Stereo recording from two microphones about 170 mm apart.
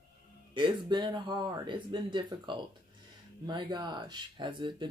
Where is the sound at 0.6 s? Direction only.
30° right (ahead or behind).